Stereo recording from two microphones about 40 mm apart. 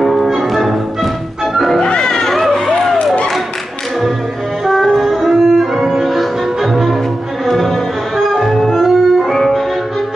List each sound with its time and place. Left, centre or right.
0.0 s music: centre
1.8 s music: centre
2.2 s a sound: centre
4.6 s music: centre